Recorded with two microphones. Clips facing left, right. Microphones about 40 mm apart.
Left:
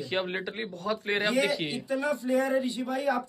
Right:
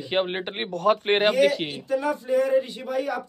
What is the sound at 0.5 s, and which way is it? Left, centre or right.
Speech, right.